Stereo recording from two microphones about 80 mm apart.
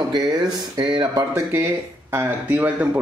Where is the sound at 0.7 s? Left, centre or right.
Right.